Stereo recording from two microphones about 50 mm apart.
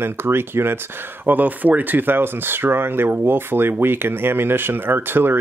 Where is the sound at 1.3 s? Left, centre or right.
Right.